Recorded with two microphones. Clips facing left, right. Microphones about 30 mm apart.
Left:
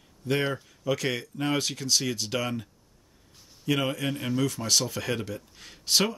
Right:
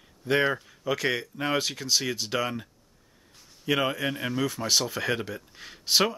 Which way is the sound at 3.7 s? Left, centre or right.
Centre.